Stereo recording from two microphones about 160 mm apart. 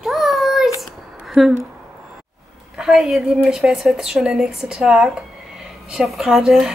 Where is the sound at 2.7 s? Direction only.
5° right (ahead or behind).